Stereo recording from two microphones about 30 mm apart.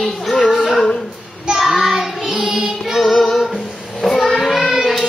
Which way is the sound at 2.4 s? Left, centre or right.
Centre.